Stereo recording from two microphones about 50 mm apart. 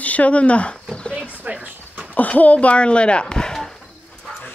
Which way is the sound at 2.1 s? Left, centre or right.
Left.